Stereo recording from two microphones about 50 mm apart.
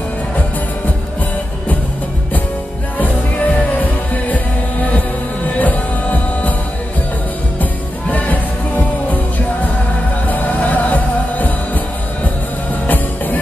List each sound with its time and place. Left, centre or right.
3.0 s music: left
5.6 s music: left
8.1 s music: left
10.2 s music: left
12.8 s music: left